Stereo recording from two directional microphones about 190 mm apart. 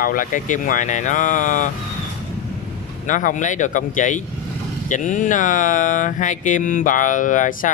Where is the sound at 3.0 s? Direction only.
40° left (ahead or behind).